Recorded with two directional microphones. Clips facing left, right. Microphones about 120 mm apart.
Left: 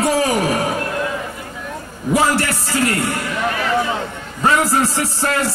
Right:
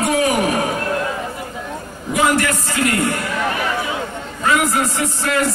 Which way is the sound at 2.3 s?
35° left (ahead or behind).